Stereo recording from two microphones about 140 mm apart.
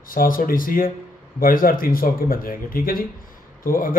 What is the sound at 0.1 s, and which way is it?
A man's voice, 80° left.